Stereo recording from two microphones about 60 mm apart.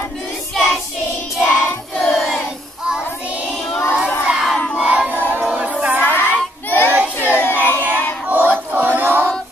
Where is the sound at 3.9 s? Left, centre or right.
Centre.